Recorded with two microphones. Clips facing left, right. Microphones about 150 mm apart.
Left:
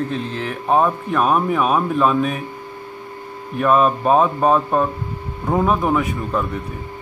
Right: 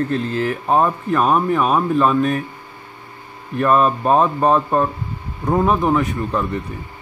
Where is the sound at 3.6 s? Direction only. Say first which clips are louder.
Even; centre (ahead or behind).